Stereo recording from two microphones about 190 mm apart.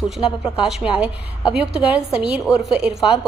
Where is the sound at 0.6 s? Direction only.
Centre (ahead or behind).